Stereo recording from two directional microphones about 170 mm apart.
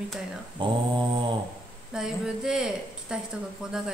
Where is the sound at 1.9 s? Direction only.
5° right (ahead or behind).